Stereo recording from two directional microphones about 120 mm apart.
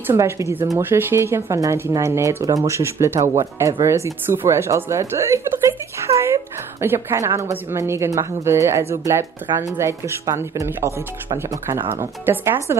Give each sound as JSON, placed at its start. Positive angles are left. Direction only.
{"t": 0.0, "sound": "speech", "side_deg": -25}
{"t": 11.9, "sound": "speech", "side_deg": -20}